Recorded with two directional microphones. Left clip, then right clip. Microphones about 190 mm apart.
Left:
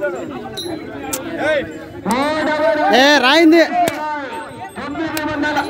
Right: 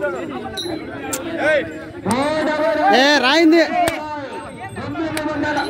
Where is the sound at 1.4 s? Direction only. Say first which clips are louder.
Right 1 dB; centre (ahead or behind).